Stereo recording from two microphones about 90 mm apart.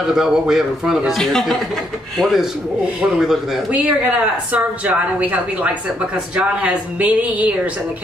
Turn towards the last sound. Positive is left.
turn(degrees=-15)  # may be behind; listen again after turning